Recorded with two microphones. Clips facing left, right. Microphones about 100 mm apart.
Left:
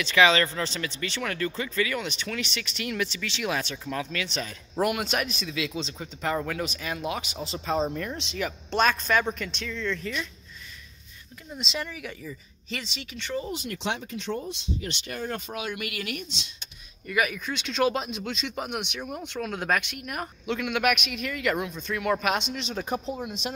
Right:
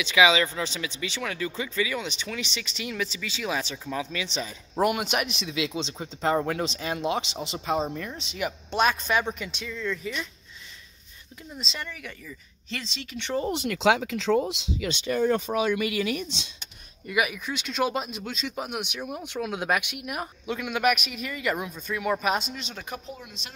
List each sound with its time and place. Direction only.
0.0 s speech: 5° right (ahead or behind)
7.7 s speech: 5° right (ahead or behind)
11.5 s speech: 5° left (ahead or behind)
13.4 s speech: 75° right (ahead or behind); by 14.9 s 90° right
17.1 s speech: 10° right (ahead or behind)
22.8 s speech: 25° left (ahead or behind)